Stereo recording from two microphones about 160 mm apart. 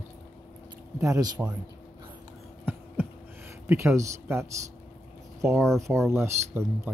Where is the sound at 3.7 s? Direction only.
15° right (ahead or behind).